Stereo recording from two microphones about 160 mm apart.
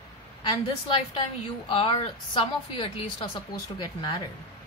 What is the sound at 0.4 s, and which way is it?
A woman's voice, 30° left (ahead or behind).